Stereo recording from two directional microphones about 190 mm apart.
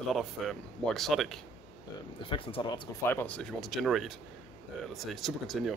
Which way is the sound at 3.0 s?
10° left (ahead or behind).